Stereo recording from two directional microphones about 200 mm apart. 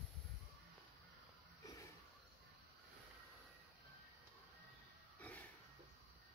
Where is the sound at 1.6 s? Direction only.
15° left (ahead or behind).